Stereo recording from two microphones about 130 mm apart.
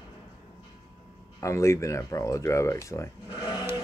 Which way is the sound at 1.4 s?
20° left (ahead or behind).